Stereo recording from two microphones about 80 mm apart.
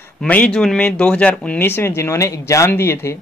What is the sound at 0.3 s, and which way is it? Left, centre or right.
Speech, centre.